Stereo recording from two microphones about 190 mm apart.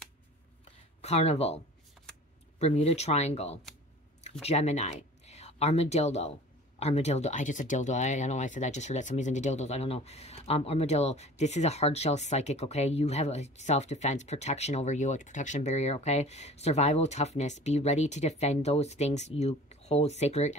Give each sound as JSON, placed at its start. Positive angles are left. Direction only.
{"t": 1.0, "sound": "speech", "side_deg": 35}
{"t": 2.6, "sound": "speech", "side_deg": 35}